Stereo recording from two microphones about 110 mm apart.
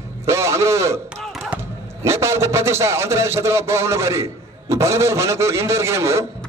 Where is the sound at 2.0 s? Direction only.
25° right (ahead or behind).